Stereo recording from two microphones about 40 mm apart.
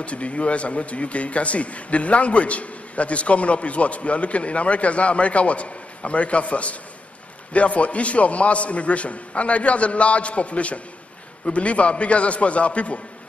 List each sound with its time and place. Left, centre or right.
0.0 s speech: left